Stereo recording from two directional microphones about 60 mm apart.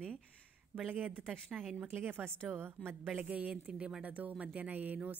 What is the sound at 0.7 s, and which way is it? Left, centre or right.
Speech, right.